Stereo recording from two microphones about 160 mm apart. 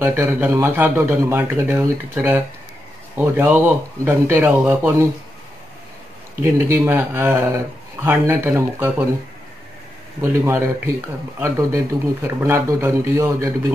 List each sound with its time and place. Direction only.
0.0 s speech: 15° right (ahead or behind)
6.4 s speech: 10° right (ahead or behind)
10.2 s speech: 15° right (ahead or behind)